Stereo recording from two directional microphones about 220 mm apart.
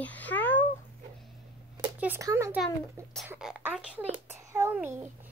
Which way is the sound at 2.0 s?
10° right (ahead or behind).